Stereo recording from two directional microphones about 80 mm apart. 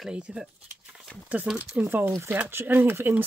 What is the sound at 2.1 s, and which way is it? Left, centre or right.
Speech, right.